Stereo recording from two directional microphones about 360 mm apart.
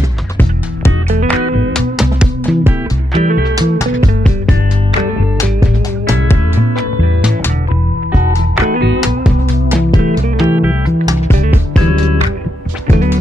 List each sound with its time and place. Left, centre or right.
0.4 s music: centre
3.2 s music: right
8.6 s music: right
9.0 s music: centre